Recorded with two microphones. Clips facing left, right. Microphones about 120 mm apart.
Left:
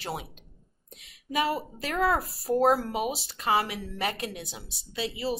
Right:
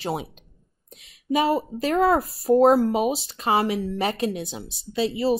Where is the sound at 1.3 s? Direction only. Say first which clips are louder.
Right 7 dB; 25° right (ahead or behind).